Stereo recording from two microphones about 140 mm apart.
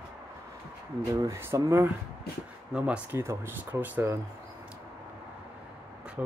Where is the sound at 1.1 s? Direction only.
20° right (ahead or behind).